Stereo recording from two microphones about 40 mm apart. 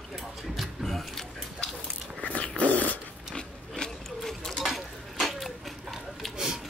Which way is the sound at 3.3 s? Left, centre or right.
Centre.